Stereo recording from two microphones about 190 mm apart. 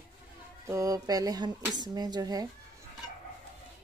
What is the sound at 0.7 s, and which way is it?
Speech, 20° right (ahead or behind).